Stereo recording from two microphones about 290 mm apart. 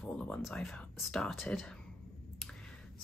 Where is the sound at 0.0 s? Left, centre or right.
Centre.